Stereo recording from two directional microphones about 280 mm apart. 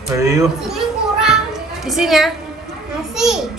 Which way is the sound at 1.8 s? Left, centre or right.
Centre.